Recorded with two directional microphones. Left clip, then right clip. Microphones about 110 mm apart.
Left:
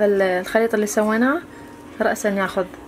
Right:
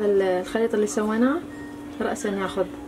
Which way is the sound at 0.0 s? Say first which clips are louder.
Left 4 dB; 40° left (ahead or behind).